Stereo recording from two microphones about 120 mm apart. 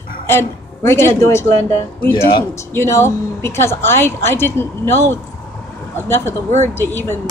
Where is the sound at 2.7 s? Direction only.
20° left (ahead or behind).